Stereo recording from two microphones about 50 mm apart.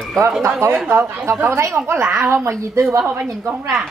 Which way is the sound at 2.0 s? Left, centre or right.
Right.